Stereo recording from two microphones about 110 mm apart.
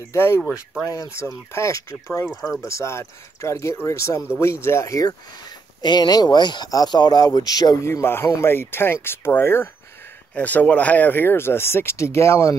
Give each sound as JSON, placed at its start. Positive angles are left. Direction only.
{"t": 0.1, "sound": "speech", "side_deg": 20}
{"t": 0.4, "sound": "speech", "side_deg": 0}
{"t": 0.8, "sound": "speech", "side_deg": 30}
{"t": 7.8, "sound": "speech", "side_deg": 25}